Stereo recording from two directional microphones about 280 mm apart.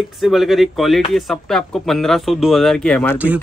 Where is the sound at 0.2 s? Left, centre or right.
Centre.